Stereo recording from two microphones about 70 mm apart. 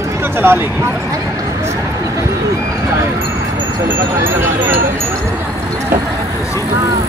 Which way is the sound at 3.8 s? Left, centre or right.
Right.